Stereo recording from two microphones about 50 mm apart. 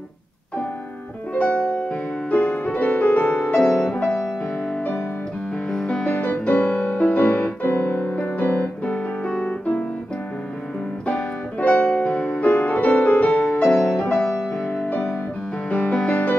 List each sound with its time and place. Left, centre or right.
1.3 s music: left
3.6 s music: centre
5.7 s music: centre
6.0 s music: left
7.6 s piano: left
8.9 s music: centre
11.6 s music: left
13.9 s music: left
14.6 s music: left